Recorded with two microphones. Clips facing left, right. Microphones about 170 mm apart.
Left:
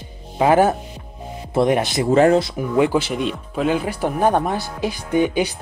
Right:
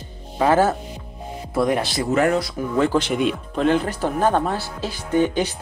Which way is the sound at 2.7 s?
10° left (ahead or behind).